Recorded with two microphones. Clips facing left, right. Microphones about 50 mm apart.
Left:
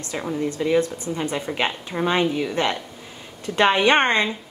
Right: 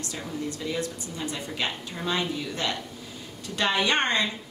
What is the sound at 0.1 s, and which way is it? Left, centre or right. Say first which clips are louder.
Speech: left 10 dB; left.